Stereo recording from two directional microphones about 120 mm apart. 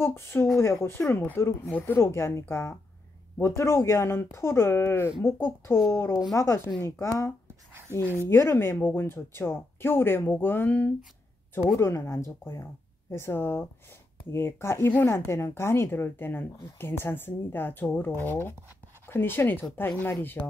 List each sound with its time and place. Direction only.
0.0 s speech: 20° left (ahead or behind)